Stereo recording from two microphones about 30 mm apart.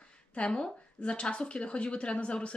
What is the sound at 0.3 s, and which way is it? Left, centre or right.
Speech, left.